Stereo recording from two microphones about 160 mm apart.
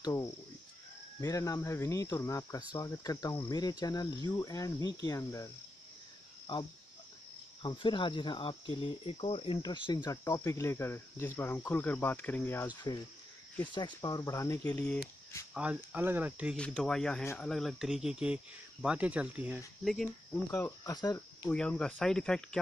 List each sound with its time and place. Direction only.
0.0 s speech: 20° left (ahead or behind)
6.5 s speech: 30° left (ahead or behind); by 12.6 s 15° left (ahead or behind)
12.6 s speech: 25° left (ahead or behind)
14.8 s speech: 5° left (ahead or behind)
15.5 s speech: 10° right (ahead or behind)
16.5 s speech: 5° left (ahead or behind)
17.2 s speech: 15° left (ahead or behind)
17.5 s speech: centre (ahead or behind)
20.5 s speech: 20° left (ahead or behind)
21.5 s speech: 5° left (ahead or behind)